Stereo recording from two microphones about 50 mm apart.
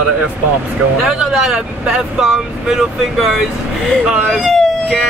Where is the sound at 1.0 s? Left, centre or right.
Centre.